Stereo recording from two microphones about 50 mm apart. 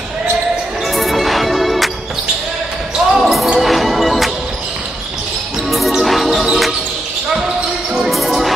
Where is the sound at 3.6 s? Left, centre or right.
Centre.